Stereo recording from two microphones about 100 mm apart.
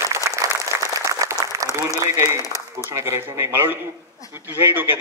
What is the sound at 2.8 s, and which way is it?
A woman's voice, 25° right (ahead or behind).